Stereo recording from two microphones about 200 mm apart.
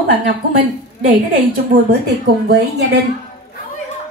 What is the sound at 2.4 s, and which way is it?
Speech, 55° right (ahead or behind).